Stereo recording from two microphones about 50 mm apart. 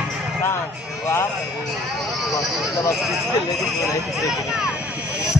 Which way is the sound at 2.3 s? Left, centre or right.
Left.